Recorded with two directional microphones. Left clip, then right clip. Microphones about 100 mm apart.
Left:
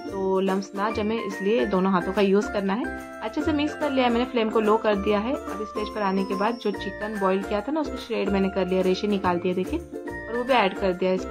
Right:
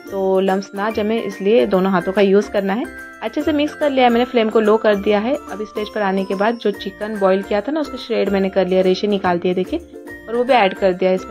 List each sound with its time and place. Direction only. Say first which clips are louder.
0.3 s speech: right 8 dB; 30° right (ahead or behind)